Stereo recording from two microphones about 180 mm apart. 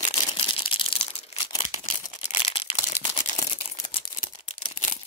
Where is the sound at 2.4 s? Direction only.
30° left (ahead or behind).